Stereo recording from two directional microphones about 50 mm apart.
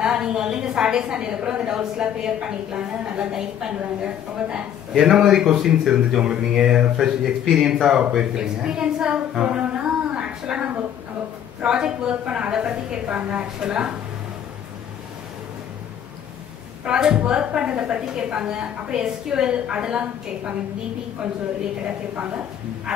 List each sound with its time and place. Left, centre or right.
0.0 s a woman's voice: centre
11.6 s a woman's voice: centre
13.0 s a woman's voice: right
16.8 s a woman's voice: centre
22.1 s speech: right
22.9 s a woman's voice: centre